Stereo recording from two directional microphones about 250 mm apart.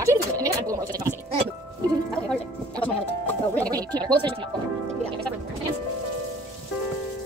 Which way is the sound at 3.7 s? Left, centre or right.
Centre.